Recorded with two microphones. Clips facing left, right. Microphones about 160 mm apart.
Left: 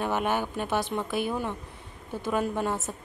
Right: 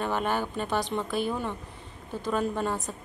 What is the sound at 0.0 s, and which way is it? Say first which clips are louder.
A woman's voice: left 1 dB; 10° left (ahead or behind).